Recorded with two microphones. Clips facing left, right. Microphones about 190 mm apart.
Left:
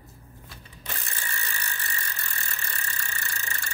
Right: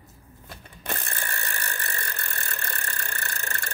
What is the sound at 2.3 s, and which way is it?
Vehicle, 60° right (ahead or behind).